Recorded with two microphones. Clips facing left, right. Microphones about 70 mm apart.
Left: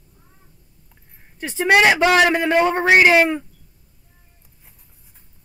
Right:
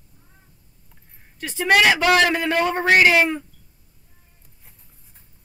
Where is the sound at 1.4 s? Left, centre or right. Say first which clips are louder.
Left 2 dB; centre.